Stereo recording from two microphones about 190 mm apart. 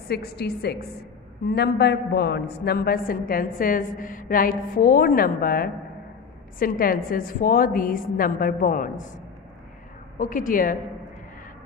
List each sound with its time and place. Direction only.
0.1 s a woman's voice: 55° left (ahead or behind)
10.1 s a man's voice: 45° left (ahead or behind)